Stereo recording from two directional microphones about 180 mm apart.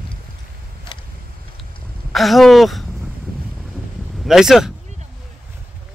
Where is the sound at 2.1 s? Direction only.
Centre (ahead or behind).